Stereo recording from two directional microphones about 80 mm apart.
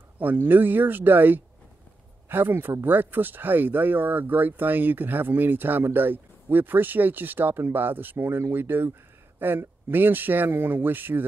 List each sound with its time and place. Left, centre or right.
0.2 s speech: right